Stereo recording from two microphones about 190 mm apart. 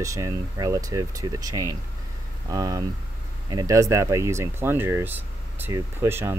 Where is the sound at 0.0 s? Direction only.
15° right (ahead or behind).